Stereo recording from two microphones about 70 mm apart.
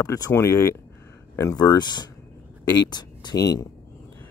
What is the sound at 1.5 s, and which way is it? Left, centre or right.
Speech, left.